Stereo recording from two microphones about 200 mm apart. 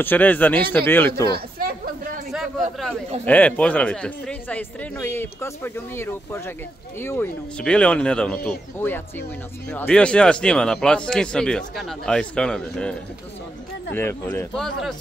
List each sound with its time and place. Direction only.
0.0 s speech: 10° left (ahead or behind)
1.3 s a sound: 45° right (ahead or behind)
3.3 s a man's voice: 5° left (ahead or behind)
13.9 s speech: 10° left (ahead or behind)